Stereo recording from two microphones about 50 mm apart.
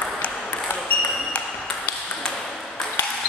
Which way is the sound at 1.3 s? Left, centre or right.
Left.